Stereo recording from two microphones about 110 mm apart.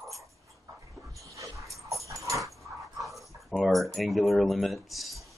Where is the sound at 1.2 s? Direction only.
30° right (ahead or behind).